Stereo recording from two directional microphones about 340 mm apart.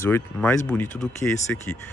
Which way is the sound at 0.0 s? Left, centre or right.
Centre.